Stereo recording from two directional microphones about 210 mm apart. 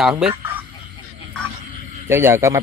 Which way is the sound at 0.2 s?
10° right (ahead or behind).